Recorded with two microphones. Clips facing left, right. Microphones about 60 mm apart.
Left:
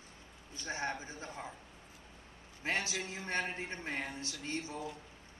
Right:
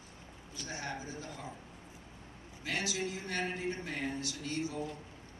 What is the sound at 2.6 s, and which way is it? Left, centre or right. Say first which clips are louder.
A man's voice: even; left.